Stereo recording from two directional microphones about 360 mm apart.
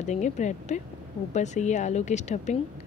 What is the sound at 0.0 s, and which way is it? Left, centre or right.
A woman's voice, centre.